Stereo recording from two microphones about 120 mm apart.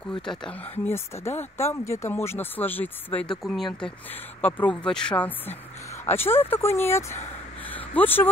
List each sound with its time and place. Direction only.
0.2 s speech: 5° left (ahead or behind)
0.8 s speech: 20° left (ahead or behind); by 3.9 s 5° left (ahead or behind)
4.1 s speech: 15° left (ahead or behind)
7.6 s a sound: 15° left (ahead or behind)